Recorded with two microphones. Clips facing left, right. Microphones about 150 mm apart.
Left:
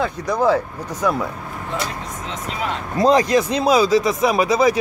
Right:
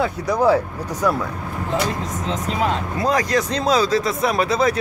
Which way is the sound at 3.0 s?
25° left (ahead or behind).